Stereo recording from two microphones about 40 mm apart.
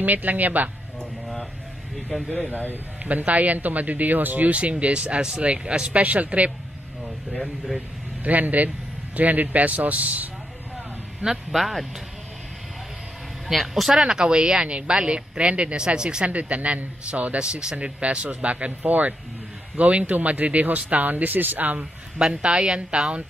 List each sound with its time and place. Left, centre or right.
0.0 s speech: right
3.0 s speech: right
4.5 s speech: right
8.2 s a man's voice: right
11.5 s speech: centre
13.5 s speech: centre
13.9 s speech: centre
16.3 s speech: right
22.5 s speech: centre